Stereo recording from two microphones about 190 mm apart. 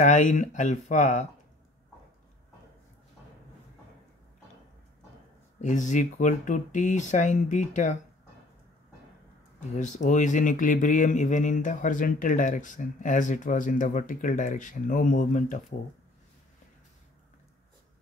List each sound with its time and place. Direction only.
0.0 s speech: 40° left (ahead or behind)
5.6 s speech: 40° left (ahead or behind)
9.6 s speech: 40° left (ahead or behind)